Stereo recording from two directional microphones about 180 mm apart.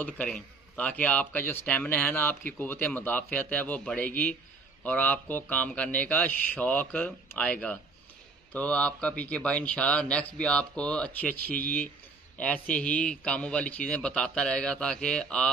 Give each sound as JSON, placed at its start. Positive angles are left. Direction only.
{"t": 0.0, "sound": "a man's voice", "side_deg": 5}